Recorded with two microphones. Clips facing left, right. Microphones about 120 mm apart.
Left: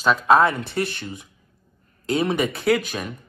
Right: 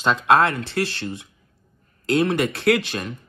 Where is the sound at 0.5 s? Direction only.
70° right (ahead or behind).